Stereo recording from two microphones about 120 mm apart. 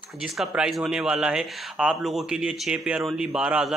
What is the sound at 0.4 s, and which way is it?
Speech, centre (ahead or behind).